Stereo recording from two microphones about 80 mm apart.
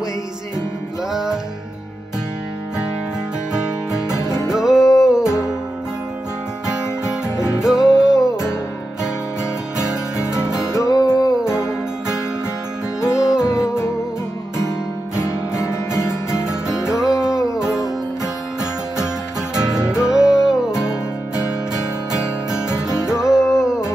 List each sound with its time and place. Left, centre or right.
1.1 s music: centre
4.5 s music: centre
6.7 s guitar: centre
7.6 s music: centre
10.1 s music: left
10.7 s music: left
11.4 s music: centre
13.0 s music: centre
13.5 s music: left
15.1 s music: left
16.4 s music: centre
22.8 s music: centre